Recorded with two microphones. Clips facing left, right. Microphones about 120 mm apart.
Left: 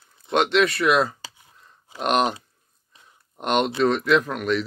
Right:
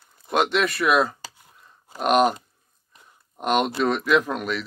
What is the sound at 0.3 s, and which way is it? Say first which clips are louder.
Speech: left 2 dB; 5° right (ahead or behind).